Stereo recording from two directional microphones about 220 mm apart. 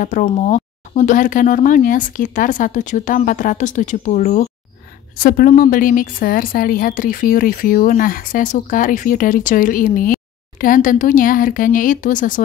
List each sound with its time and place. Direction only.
0.0 s a woman's voice: 35° left (ahead or behind)